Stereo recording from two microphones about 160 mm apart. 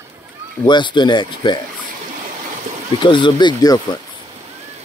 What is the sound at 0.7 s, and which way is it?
Speech, 30° left (ahead or behind).